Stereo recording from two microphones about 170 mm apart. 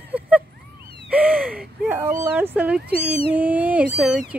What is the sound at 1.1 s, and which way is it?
Speech, 10° right (ahead or behind).